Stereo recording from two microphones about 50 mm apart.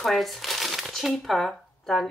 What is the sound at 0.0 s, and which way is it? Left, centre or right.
Speech, centre.